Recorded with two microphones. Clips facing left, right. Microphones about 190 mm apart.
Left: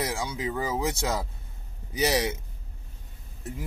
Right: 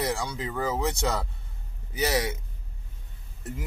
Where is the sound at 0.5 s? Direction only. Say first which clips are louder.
Even; 10° left (ahead or behind).